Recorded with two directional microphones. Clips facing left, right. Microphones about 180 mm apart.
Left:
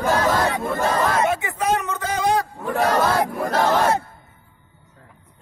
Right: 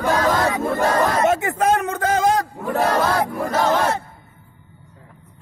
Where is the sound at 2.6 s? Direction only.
5° right (ahead or behind).